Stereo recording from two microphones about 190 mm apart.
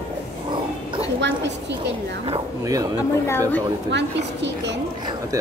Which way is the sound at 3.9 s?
65° right (ahead or behind).